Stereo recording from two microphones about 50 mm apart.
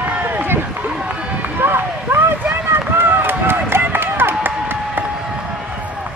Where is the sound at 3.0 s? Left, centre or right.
Right.